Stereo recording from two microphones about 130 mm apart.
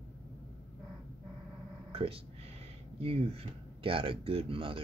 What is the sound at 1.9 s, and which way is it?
Speech, 45° right (ahead or behind).